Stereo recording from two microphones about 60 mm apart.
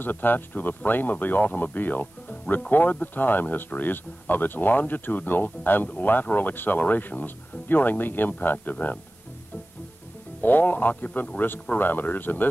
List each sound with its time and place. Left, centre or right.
0.0 s speech: left
10.4 s speech: left